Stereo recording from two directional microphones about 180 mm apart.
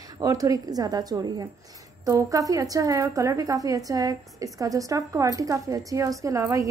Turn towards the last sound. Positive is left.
turn(degrees=-15)  # may be behind; listen again after turning